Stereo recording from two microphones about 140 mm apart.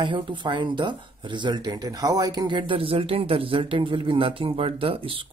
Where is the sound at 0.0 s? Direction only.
35° right (ahead or behind).